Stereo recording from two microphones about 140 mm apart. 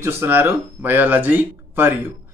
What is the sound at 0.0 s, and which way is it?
Speech, 15° right (ahead or behind).